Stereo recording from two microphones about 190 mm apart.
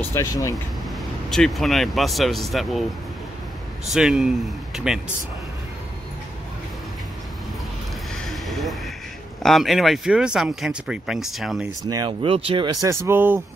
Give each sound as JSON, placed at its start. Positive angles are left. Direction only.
{"t": 0.0, "sound": "speech", "side_deg": 15}
{"t": 0.8, "sound": "speech", "side_deg": 0}
{"t": 3.9, "sound": "speech", "side_deg": 0}
{"t": 8.3, "sound": "a sound", "side_deg": 0}
{"t": 9.4, "sound": "speech", "side_deg": 0}
{"t": 11.9, "sound": "speech", "side_deg": -25}